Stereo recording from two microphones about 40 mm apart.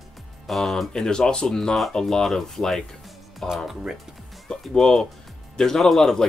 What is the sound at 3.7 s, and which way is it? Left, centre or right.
Speech, centre.